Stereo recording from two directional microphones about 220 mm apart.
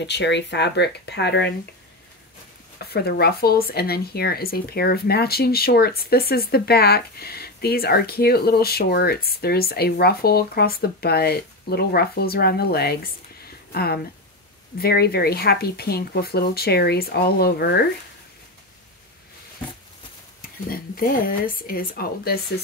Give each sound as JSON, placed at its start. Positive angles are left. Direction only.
{"t": 0.0, "sound": "speech", "side_deg": 50}
{"t": 2.8, "sound": "speech", "side_deg": 45}
{"t": 20.4, "sound": "speech", "side_deg": 40}